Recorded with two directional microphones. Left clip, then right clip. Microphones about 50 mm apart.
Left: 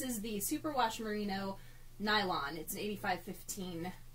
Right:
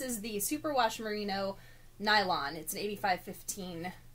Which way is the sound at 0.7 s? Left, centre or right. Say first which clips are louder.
Right 4 dB; right.